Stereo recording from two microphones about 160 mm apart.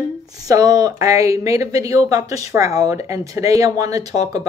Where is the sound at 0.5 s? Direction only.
20° right (ahead or behind).